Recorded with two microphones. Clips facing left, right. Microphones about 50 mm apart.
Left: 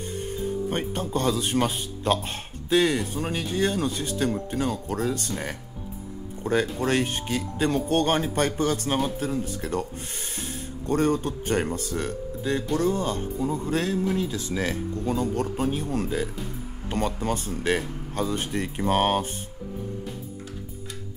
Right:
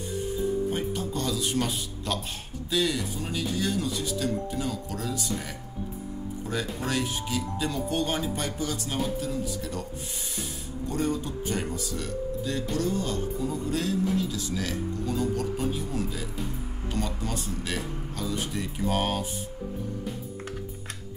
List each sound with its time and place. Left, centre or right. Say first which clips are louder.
0.7 s speech: left 1 dB; left
6.4 s speech: left 8 dB; left
10.9 s speech: left 6 dB; left